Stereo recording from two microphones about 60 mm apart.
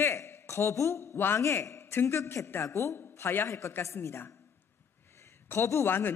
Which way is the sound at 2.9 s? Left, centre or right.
Left.